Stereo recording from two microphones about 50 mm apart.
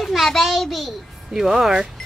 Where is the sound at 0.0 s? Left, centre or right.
Centre.